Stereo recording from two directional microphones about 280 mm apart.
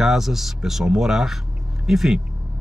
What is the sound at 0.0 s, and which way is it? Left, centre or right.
Speech, centre.